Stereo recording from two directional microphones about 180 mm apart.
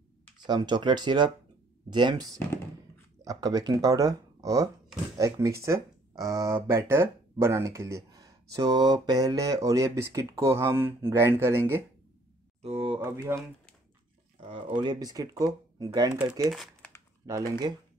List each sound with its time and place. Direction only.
0.4 s speech: 25° right (ahead or behind)
2.3 s a sound: 15° left (ahead or behind)
3.3 s speech: 20° right (ahead or behind)
12.6 s speech: 30° right (ahead or behind)
13.0 s speech: 15° right (ahead or behind)
14.8 s speech: 25° right (ahead or behind)
16.5 s crumpling: 5° left (ahead or behind)
17.3 s speech: 20° right (ahead or behind)